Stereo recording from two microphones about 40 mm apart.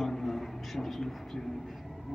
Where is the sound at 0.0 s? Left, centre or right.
Centre.